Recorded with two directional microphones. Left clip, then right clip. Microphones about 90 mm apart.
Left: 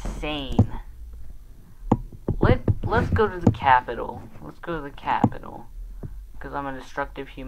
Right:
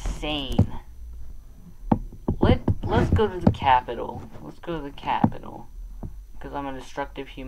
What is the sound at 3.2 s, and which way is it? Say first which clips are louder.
Speech: left 1 dB; 40° right (ahead or behind).